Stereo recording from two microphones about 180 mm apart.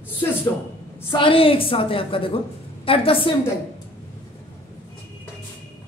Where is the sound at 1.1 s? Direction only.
30° left (ahead or behind).